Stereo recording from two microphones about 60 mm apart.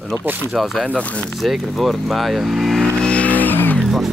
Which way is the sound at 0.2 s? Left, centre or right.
Right.